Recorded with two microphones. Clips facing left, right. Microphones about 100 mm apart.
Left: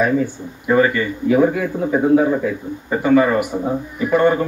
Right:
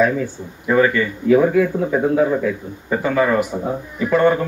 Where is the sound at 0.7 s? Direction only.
10° left (ahead or behind).